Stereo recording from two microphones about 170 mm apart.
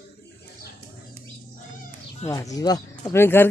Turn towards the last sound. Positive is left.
turn(degrees=15)  # may be behind; listen again after turning